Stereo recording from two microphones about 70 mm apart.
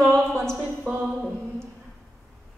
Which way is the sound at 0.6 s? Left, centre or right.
Centre.